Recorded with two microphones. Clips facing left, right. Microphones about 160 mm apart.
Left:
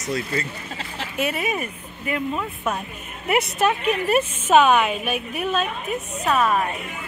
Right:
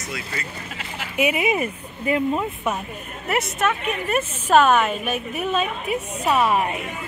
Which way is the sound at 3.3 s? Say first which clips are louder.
Left 2 dB; 30° left (ahead or behind).